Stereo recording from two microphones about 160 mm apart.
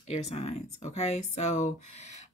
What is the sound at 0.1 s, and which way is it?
Speech, 40° left (ahead or behind).